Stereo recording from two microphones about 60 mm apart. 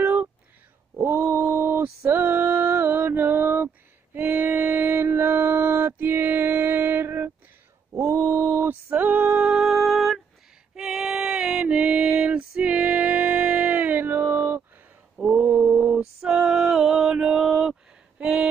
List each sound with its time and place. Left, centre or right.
1.4 s mantra: right
7.9 s male singing: right
8.9 s music: right
9.6 s music: centre
10.7 s a sound: centre; by 14.6 s right
15.1 s mantra: centre
15.5 s mantra: right
15.9 s music: centre
18.2 s a sound: centre